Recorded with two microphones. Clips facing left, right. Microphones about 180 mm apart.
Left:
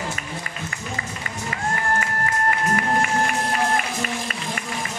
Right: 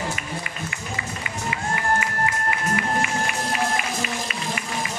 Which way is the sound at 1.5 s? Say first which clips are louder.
Even; 45° left (ahead or behind).